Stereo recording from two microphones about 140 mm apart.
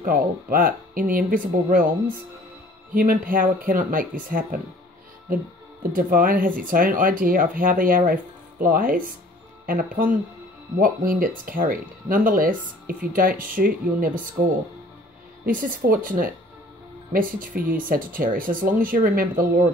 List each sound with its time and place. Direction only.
0.0 s speech: 85° right
2.9 s speech: 90° right
15.4 s speech: 80° right